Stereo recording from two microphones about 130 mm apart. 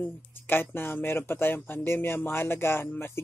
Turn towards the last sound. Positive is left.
turn(degrees=20)  # may be behind; listen again after turning